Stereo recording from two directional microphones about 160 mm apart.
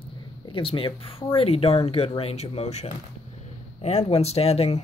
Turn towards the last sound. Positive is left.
turn(degrees=40)  # may be behind; listen again after turning